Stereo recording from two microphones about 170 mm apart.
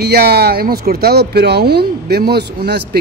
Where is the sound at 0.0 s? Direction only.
70° right (ahead or behind).